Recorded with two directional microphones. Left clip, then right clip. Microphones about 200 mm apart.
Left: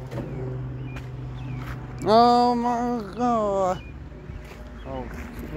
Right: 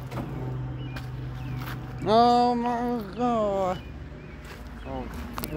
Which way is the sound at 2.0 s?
35° left (ahead or behind).